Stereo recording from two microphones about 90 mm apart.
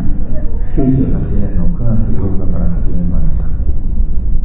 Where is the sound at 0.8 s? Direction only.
Centre (ahead or behind).